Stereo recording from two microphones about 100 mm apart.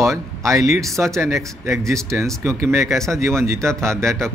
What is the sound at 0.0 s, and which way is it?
Speech, 30° right (ahead or behind).